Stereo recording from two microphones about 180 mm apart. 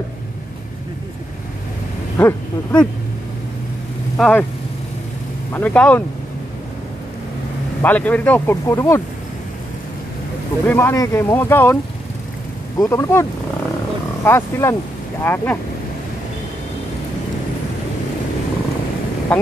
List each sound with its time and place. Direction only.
2.1 s speech: 10° left (ahead or behind)
4.2 s speech: 10° left (ahead or behind)
5.5 s speech: 10° left (ahead or behind)
7.8 s speech: 10° left (ahead or behind)
10.7 s speech: 15° left (ahead or behind)
19.3 s a sound: 5° left (ahead or behind)